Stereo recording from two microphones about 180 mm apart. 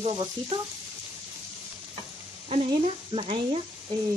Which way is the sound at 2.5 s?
35° right (ahead or behind).